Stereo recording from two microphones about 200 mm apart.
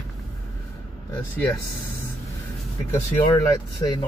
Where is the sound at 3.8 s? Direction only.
25° left (ahead or behind).